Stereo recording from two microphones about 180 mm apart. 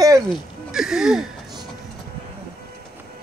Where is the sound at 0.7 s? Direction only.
5° right (ahead or behind).